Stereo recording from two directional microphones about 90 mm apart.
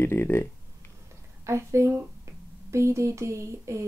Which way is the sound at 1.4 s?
30° right (ahead or behind).